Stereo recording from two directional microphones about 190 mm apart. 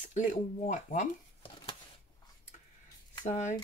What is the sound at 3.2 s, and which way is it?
Speech, 35° left (ahead or behind).